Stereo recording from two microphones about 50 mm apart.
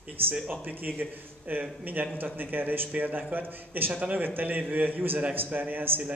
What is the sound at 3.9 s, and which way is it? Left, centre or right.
Speech, right.